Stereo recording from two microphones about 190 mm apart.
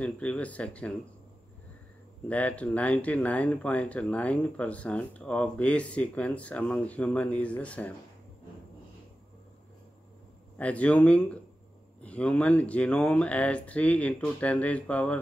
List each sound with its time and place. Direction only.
0.0 s speech: 5° left (ahead or behind)
2.2 s speech: 5° left (ahead or behind)
10.6 s speech: 5° left (ahead or behind)